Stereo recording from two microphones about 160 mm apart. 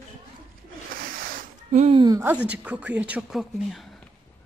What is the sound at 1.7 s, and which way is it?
Speech, 40° right (ahead or behind).